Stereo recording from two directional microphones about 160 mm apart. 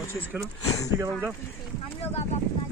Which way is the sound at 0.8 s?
15° right (ahead or behind).